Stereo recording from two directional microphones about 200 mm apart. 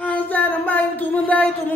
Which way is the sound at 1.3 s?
10° left (ahead or behind).